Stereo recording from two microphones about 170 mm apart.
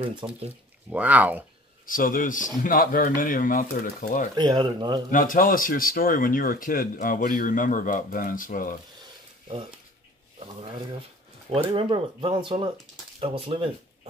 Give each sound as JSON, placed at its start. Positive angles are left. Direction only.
{"t": 0.2, "sound": "speech", "side_deg": -20}
{"t": 0.9, "sound": "speech", "side_deg": -10}
{"t": 1.9, "sound": "speech", "side_deg": 55}
{"t": 4.4, "sound": "speech", "side_deg": -25}
{"t": 5.1, "sound": "speech", "side_deg": 50}
{"t": 11.5, "sound": "speech", "side_deg": -35}